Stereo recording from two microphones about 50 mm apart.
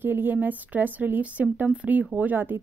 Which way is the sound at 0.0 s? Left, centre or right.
Right.